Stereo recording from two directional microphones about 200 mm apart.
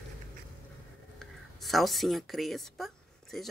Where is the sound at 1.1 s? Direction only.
Centre (ahead or behind).